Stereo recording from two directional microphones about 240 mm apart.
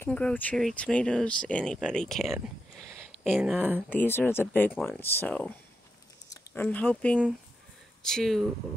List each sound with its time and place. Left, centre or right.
0.0 s speech: centre
3.9 s speech: centre